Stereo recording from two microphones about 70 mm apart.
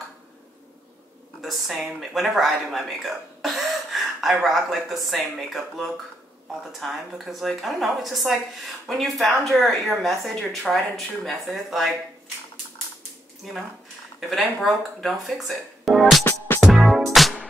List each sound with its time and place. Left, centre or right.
1.4 s speech: centre
13.4 s speech: centre
16.3 s music: left
16.6 s music: centre